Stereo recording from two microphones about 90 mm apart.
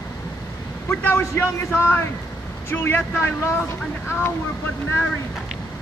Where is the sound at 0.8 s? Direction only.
25° left (ahead or behind).